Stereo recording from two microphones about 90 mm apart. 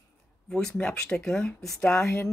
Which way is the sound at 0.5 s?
10° left (ahead or behind).